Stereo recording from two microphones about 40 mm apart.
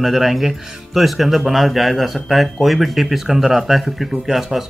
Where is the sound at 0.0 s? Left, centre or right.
Centre.